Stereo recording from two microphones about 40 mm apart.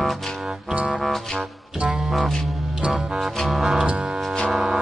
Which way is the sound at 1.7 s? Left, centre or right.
Right.